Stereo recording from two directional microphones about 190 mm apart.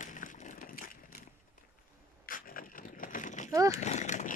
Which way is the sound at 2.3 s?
45° left (ahead or behind).